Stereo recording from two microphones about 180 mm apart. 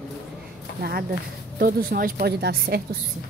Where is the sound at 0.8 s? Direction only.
60° right (ahead or behind).